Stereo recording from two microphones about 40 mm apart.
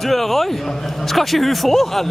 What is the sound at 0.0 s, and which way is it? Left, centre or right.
A man's voice, centre.